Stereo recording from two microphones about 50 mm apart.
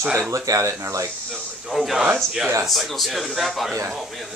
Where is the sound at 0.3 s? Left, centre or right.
Right.